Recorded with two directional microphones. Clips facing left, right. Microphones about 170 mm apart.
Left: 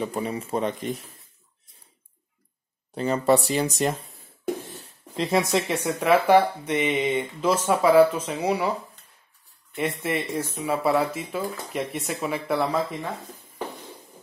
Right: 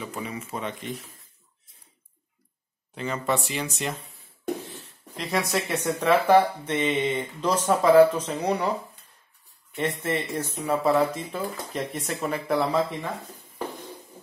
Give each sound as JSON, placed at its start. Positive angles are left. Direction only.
{"t": 0.0, "sound": "speech", "side_deg": 35}
{"t": 2.9, "sound": "speech", "side_deg": 35}
{"t": 5.1, "sound": "speech", "side_deg": 30}
{"t": 5.5, "sound": "speech", "side_deg": 15}
{"t": 9.8, "sound": "speech", "side_deg": 10}